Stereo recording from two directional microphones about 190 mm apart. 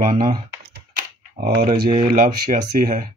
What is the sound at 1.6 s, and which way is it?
Speech, 50° right (ahead or behind).